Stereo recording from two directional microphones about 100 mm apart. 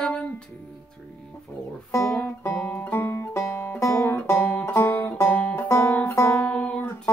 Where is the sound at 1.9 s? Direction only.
30° left (ahead or behind).